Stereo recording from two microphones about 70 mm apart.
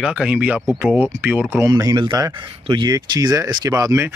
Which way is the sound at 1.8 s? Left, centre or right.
Right.